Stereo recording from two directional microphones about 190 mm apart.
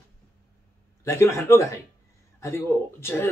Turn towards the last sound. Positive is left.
turn(degrees=15)  # may be behind; listen again after turning